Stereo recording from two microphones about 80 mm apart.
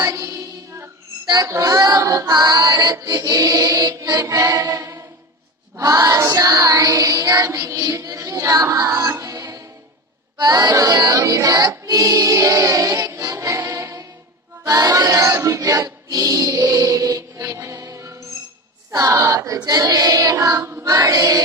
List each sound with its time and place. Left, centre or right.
0.0 s music: right
1.2 s speech: right
1.5 s child singing: right
4.6 s music: right
5.8 s child singing: right
10.3 s choir: right
14.6 s child singing: right
15.4 s music: right
18.9 s speech: right
19.6 s child singing: right